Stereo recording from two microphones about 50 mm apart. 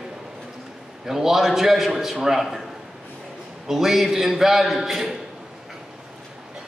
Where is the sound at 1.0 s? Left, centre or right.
Centre.